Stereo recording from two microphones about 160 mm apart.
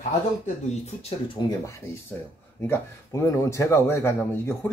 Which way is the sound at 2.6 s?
15° left (ahead or behind).